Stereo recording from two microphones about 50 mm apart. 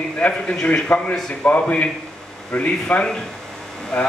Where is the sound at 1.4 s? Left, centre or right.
Left.